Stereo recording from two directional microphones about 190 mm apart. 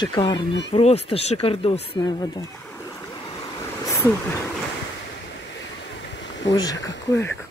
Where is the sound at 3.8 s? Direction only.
15° left (ahead or behind).